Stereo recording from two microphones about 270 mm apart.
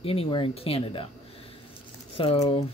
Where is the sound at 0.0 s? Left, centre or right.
Left.